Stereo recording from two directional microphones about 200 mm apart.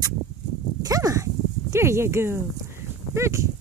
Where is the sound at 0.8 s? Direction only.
15° right (ahead or behind).